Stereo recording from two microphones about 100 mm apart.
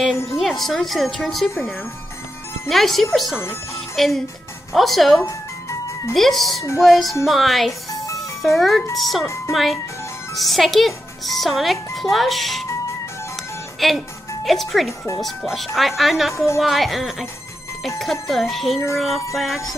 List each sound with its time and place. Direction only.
0.4 s a child's voice: centre (ahead or behind)
2.7 s a child's voice: centre (ahead or behind)
5.2 s music: 30° left (ahead or behind)
6.1 s a child's voice: centre (ahead or behind)
8.2 s music: centre (ahead or behind)
8.9 s a child's voice: centre (ahead or behind)
13.7 s a child's voice: centre (ahead or behind)